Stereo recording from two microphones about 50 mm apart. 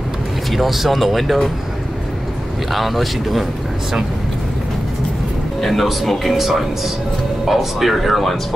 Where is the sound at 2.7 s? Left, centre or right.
Centre.